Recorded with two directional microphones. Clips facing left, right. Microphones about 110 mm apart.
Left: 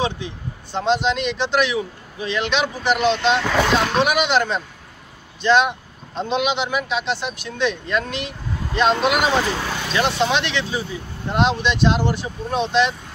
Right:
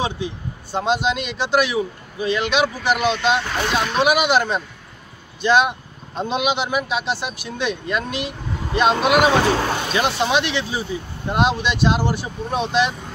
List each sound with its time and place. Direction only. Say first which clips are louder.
0.0 s speech: even; 10° right (ahead or behind)